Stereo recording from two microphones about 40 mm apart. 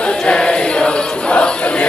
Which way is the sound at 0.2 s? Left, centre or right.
Left.